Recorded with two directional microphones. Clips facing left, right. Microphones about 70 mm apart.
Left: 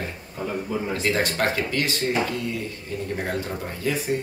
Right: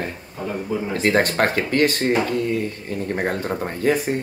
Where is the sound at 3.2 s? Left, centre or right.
Right.